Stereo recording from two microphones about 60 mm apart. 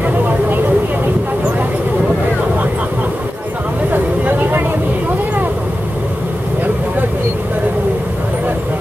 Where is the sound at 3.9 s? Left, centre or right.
Right.